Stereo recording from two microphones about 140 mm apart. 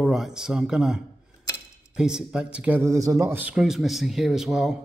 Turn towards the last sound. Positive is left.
turn(degrees=-5)  # may be behind; listen again after turning